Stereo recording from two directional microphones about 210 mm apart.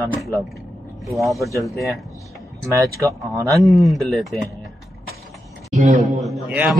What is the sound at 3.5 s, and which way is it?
Speech, centre (ahead or behind).